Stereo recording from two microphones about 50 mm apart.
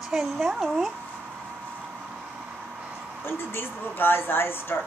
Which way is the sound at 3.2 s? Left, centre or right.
Left.